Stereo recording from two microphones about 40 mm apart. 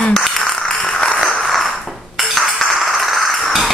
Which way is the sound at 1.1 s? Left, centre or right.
Centre.